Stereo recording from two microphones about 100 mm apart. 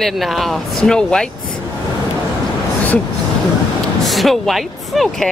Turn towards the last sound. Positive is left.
turn(degrees=0)  # may be behind; listen again after turning